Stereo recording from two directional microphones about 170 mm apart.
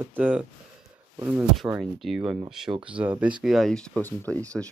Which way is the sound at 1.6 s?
Centre (ahead or behind).